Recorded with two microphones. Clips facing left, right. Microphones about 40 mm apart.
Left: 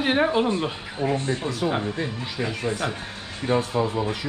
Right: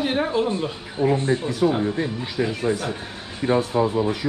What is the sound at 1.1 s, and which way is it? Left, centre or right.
Speech, right.